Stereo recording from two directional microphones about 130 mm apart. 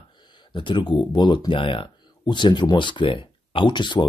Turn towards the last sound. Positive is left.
turn(degrees=35)  # may be behind; listen again after turning